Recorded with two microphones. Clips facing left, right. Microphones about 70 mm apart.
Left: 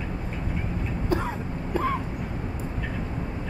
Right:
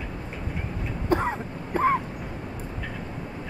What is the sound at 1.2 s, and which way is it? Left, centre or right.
Throat clearing, right.